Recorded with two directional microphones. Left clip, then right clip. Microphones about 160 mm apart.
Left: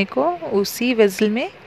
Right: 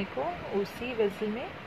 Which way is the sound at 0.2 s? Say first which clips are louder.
Left 12 dB; 90° left.